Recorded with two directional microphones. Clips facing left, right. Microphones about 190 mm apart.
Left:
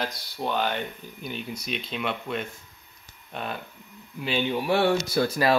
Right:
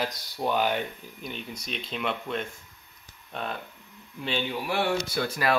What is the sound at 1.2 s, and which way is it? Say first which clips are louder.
Speech: left 3 dB; 5° left (ahead or behind).